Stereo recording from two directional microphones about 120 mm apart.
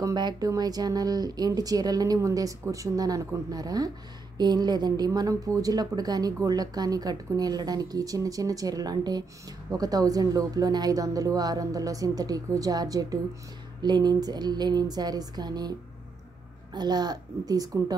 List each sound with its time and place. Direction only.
0.0 s a woman's voice: 35° right (ahead or behind)
16.7 s a woman's voice: 35° right (ahead or behind)